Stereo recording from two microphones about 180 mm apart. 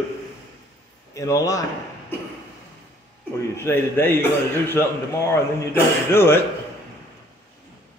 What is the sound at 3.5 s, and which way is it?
A man's voice, 15° left (ahead or behind).